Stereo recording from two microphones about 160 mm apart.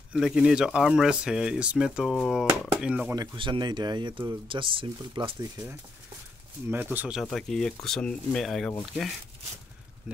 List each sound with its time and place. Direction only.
0.1 s speech: 5° right (ahead or behind)
3.2 s speech: 30° right (ahead or behind)
6.7 s speech: 10° right (ahead or behind)
7.2 s speech: centre (ahead or behind)
10.1 s speech: 5° right (ahead or behind)